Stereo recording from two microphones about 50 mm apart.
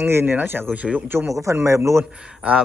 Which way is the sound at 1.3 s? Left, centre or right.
Right.